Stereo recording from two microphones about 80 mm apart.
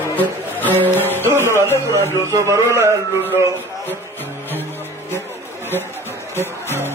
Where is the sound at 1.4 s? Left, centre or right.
Right.